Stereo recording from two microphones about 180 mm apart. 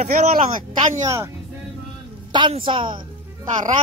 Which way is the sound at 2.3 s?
25° right (ahead or behind).